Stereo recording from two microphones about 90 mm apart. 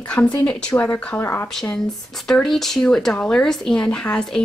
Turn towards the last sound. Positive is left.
turn(degrees=10)  # may be behind; listen again after turning